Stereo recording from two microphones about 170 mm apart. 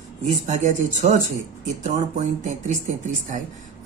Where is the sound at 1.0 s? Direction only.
45° right (ahead or behind).